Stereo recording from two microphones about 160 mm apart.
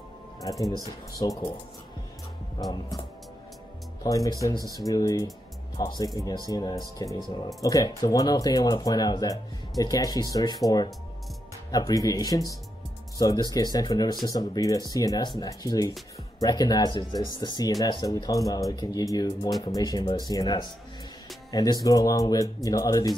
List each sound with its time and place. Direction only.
0.4 s speech: 20° left (ahead or behind)
2.6 s speech: 25° left (ahead or behind)
4.0 s speech: 20° left (ahead or behind)